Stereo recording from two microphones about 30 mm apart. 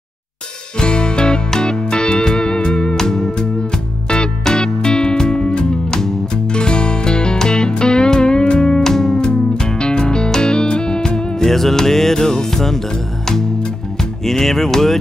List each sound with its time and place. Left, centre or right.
0.7 s music: left
3.0 s music: centre
4.5 s music: left
5.9 s music: centre
6.5 s music: left
8.8 s music: centre
11.3 s music: centre
14.2 s music: centre